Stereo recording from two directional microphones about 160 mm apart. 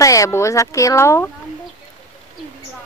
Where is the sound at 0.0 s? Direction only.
20° left (ahead or behind).